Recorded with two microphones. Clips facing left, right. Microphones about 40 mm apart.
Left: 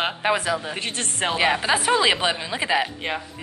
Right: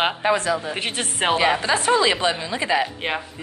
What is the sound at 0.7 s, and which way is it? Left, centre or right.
Speech, centre.